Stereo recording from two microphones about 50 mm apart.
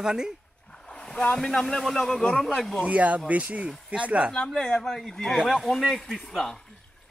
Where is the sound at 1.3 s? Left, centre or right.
Centre.